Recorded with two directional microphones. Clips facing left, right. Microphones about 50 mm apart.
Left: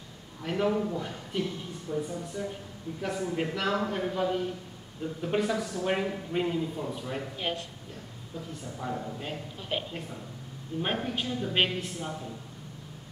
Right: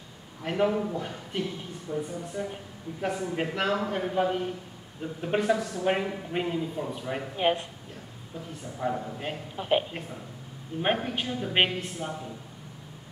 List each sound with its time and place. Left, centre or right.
0.4 s speech: centre
4.1 s a woman's voice: right
5.4 s speech: centre; by 7.6 s right
8.7 s speech: centre
9.6 s a woman's voice: right